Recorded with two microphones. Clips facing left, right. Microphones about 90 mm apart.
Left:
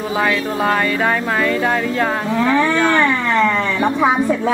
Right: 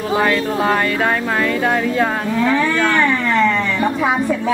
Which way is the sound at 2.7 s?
5° left (ahead or behind).